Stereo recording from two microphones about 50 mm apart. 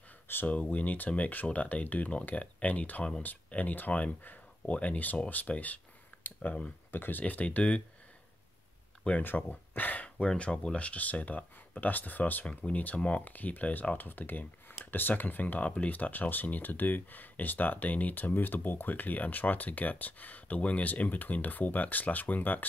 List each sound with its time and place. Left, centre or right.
0.5 s speech: left
6.2 s a sound: left
6.9 s speech: left
9.2 s speech: left
12.4 s speech: left